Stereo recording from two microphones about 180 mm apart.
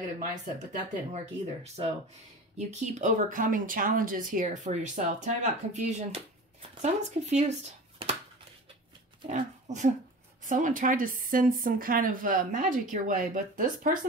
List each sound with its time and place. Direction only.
1.1 s speech: 35° right (ahead or behind)
9.3 s speech: 40° right (ahead or behind)